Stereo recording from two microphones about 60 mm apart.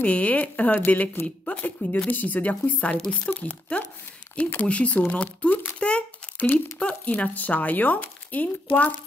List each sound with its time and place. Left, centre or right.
0.0 s speech: left
6.3 s speech: left
6.8 s speech: left